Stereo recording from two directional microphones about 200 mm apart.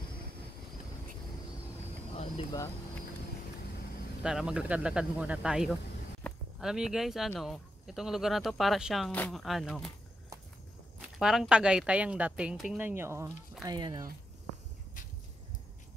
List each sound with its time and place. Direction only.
4.2 s speech: 5° right (ahead or behind)
6.2 s a sound: 10° left (ahead or behind)
6.6 s speech: 5° right (ahead or behind)
11.0 s speech: 5° right (ahead or behind); by 14.0 s 20° right (ahead or behind)